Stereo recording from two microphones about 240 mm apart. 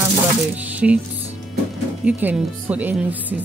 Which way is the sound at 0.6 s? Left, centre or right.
Centre.